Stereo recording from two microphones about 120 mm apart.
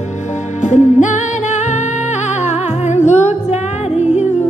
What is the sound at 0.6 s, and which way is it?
Music, 90° left.